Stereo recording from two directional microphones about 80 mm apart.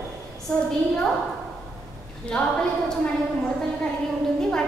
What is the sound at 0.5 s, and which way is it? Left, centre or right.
Speech, centre.